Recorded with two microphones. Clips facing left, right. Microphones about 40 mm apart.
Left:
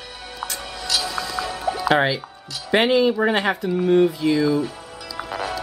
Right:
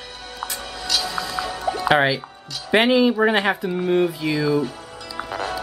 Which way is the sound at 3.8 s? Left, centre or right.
Centre.